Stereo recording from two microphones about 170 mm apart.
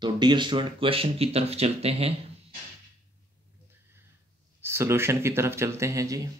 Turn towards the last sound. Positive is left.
turn(degrees=-20)  # may be behind; listen again after turning